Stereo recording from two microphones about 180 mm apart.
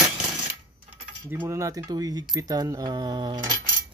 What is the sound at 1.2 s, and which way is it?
Keys jangling, 15° right (ahead or behind).